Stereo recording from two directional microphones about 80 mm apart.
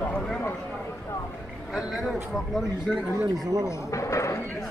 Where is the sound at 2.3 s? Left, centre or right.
Centre.